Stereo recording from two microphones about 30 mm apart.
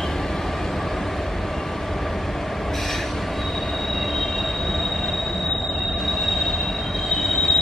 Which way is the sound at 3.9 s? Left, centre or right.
Centre.